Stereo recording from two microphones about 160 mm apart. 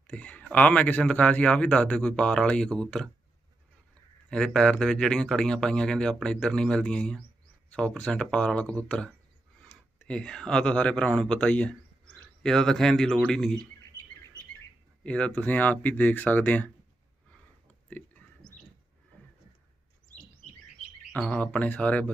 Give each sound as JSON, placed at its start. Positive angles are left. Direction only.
{"t": 0.0, "sound": "a man's voice", "side_deg": 5}
{"t": 4.3, "sound": "a man's voice", "side_deg": 5}
{"t": 15.0, "sound": "a man's voice", "side_deg": 5}
{"t": 17.8, "sound": "a sound", "side_deg": 10}
{"t": 21.1, "sound": "a man's voice", "side_deg": 5}